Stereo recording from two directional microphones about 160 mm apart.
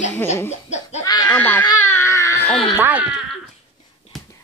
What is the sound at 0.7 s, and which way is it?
Baby laughter, 45° left (ahead or behind).